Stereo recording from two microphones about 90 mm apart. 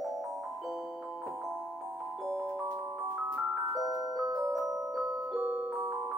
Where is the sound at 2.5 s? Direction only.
25° right (ahead or behind).